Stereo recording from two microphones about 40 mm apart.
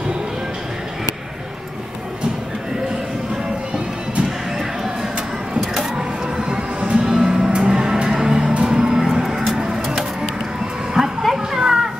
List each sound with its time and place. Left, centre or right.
3.7 s music: right
5.6 s music: centre
9.1 s a sound: centre
9.6 s pigeon: centre
11.0 s a sound: centre
11.3 s children playing: centre